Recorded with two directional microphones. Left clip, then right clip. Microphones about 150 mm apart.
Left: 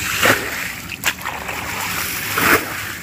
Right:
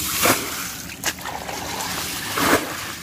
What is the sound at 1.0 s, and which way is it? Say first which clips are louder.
Boat: left 5 dB; 30° right (ahead or behind).